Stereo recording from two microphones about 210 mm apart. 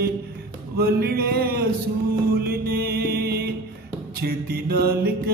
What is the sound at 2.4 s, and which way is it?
Music, 45° right (ahead or behind).